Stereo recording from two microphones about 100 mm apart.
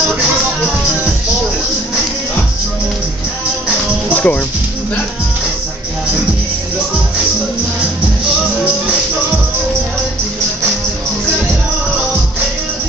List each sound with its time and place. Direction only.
4.1 s music: 15° left (ahead or behind)